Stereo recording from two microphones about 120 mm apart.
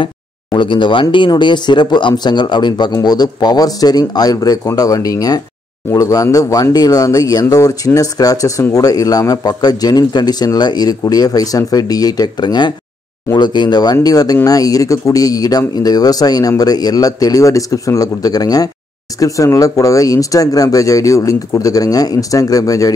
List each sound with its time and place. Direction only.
0.0 s speech: 45° left (ahead or behind)